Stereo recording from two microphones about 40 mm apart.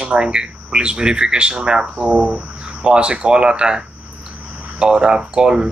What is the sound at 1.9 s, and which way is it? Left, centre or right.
Speech, right.